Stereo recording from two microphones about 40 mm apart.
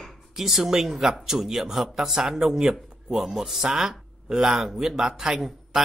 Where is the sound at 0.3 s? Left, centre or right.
Centre.